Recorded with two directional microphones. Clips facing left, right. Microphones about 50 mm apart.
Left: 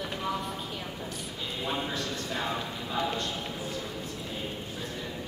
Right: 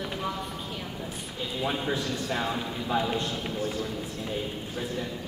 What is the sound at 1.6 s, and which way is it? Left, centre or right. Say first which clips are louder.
Speech: right 3 dB; centre.